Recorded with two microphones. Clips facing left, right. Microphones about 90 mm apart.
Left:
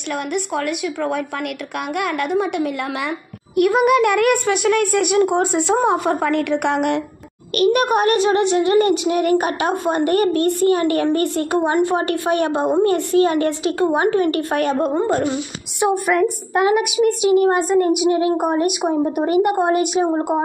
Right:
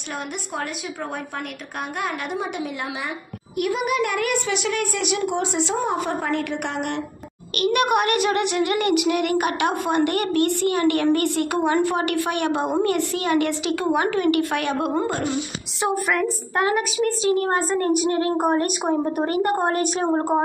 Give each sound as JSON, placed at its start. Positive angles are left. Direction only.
{"t": 0.3, "sound": "a woman's voice", "side_deg": 65}
{"t": 3.5, "sound": "a woman's voice", "side_deg": 55}
{"t": 7.5, "sound": "a child's voice", "side_deg": 40}
{"t": 15.8, "sound": "a woman's voice", "side_deg": 20}